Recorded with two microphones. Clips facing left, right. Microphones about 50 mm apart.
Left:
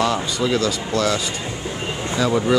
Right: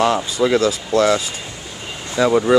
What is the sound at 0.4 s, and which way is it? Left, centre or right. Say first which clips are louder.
Speech: right 6 dB; right.